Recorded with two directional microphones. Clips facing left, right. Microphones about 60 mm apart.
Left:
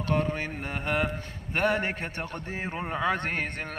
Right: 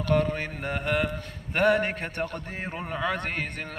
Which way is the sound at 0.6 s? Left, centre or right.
Centre.